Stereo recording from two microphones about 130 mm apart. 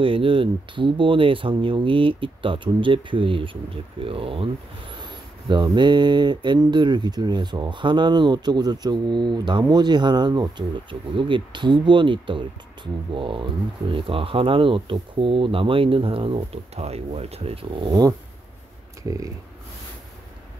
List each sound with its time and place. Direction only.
0.0 s speech: 45° right (ahead or behind)